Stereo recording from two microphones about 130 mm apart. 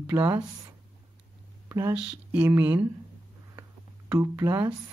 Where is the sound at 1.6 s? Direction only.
20° right (ahead or behind).